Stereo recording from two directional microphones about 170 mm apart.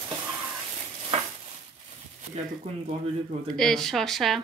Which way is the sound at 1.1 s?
40° right (ahead or behind).